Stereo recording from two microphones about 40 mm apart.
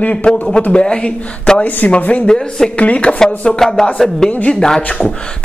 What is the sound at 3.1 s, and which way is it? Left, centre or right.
Speech, centre.